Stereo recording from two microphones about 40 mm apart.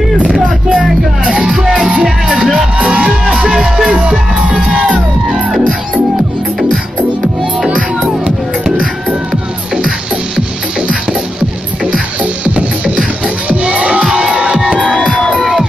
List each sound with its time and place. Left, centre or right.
1.2 s music: right
12.2 s music: right
13.5 s crowd: right
14.1 s music: right
14.4 s music: centre
15.0 s crowd: left